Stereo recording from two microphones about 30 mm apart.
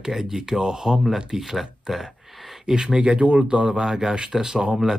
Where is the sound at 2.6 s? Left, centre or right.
Right.